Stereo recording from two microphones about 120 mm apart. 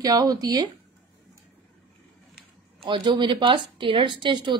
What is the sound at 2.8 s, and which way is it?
A woman's voice, 45° right (ahead or behind).